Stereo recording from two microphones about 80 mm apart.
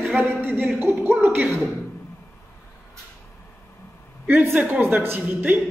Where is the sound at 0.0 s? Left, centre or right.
Right.